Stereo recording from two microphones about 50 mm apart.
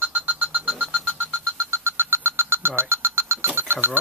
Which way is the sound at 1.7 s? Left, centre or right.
Right.